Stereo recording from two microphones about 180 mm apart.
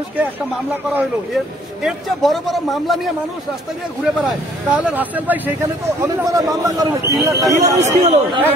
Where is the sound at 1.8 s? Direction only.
Centre (ahead or behind).